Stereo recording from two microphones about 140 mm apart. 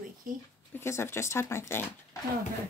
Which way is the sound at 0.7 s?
15° left (ahead or behind).